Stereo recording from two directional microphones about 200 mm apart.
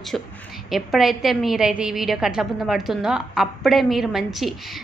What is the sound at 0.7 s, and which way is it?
A woman's voice, centre (ahead or behind).